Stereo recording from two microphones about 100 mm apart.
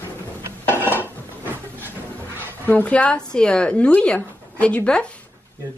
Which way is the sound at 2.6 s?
15° left (ahead or behind).